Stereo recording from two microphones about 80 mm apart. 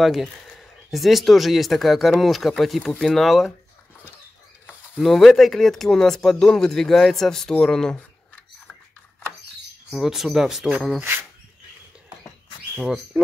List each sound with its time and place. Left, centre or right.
0.0 s speech: centre
4.9 s speech: centre
9.9 s speech: centre
11.0 s speech: right
13.1 s speech: centre